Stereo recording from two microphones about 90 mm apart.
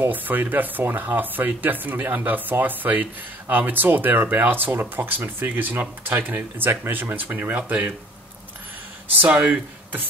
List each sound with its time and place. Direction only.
0.0 s speech: 20° right (ahead or behind)
9.2 s speech: 20° right (ahead or behind)